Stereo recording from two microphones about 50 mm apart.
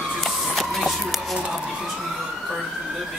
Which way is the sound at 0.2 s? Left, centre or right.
Centre.